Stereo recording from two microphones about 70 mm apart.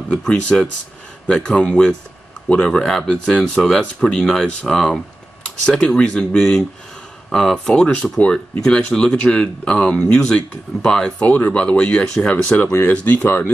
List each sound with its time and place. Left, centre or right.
0.3 s speech: centre
11.2 s speech: left